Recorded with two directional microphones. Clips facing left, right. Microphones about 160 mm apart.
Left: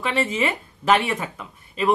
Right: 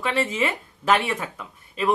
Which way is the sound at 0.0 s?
Centre (ahead or behind).